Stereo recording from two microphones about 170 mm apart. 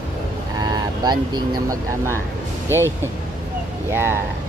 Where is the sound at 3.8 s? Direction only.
15° right (ahead or behind).